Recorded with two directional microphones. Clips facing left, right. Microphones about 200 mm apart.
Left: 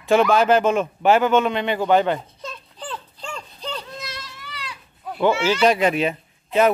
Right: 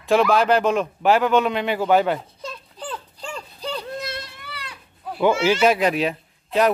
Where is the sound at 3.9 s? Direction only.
60° right (ahead or behind).